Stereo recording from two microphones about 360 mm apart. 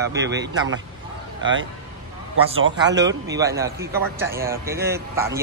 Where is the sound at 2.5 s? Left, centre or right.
Right.